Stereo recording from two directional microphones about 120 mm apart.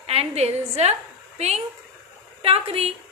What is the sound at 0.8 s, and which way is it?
A woman's voice, 65° right (ahead or behind).